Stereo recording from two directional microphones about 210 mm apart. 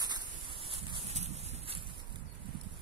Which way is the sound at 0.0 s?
20° right (ahead or behind).